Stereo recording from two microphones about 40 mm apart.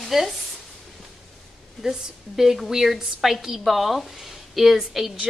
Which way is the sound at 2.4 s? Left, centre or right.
Centre.